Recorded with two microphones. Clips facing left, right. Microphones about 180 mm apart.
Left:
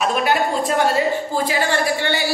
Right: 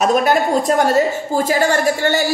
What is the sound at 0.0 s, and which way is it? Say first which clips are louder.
A woman's voice: right 4 dB; 40° right (ahead or behind).